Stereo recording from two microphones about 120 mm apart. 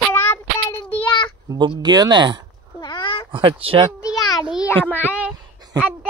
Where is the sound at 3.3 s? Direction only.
50° right (ahead or behind).